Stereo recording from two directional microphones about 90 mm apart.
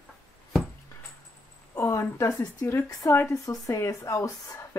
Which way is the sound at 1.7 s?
30° left (ahead or behind).